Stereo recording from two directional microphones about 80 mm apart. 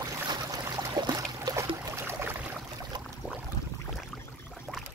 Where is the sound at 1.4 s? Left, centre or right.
Right.